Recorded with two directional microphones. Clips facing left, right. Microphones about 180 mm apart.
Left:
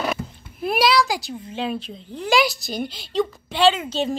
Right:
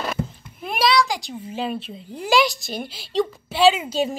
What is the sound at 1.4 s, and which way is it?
A woman's voice, 5° right (ahead or behind).